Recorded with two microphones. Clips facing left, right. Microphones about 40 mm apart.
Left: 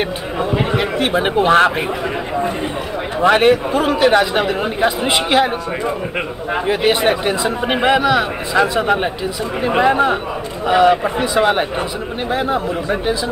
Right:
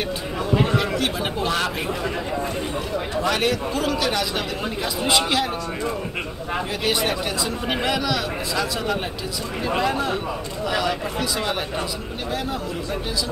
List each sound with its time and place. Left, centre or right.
0.4 s speech: left
3.2 s speech: left